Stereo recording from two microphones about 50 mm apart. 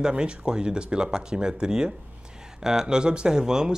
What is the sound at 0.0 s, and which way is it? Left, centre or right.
Speech, centre.